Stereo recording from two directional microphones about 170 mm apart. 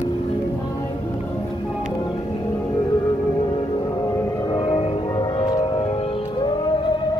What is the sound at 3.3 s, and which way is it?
Music, 30° left (ahead or behind).